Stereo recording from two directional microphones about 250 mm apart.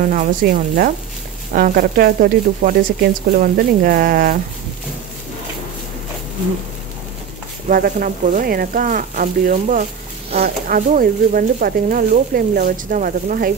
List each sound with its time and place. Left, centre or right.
0.1 s speech: right
7.6 s speech: right